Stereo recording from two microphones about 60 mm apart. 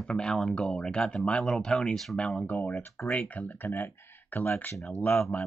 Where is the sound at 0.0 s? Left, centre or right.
Centre.